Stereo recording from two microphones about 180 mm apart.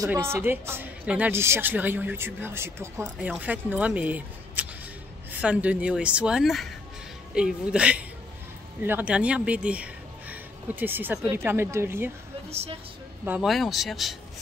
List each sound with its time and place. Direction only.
0.0 s speech: 15° right (ahead or behind)
12.4 s speech: 35° right (ahead or behind)
13.2 s speech: 5° right (ahead or behind)